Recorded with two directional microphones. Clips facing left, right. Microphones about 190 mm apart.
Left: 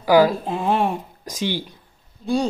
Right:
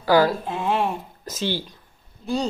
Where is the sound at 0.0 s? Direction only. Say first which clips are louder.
Left 3 dB; 15° left (ahead or behind).